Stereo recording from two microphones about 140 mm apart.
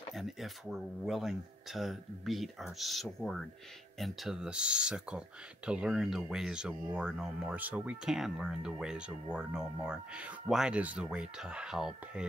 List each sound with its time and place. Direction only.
0.1 s speech: centre (ahead or behind)